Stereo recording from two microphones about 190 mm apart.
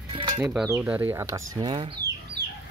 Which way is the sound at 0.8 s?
10° right (ahead or behind).